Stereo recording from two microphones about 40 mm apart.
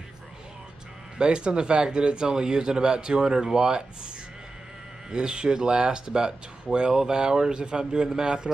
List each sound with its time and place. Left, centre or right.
1.1 s a man's voice: right
5.1 s a man's voice: right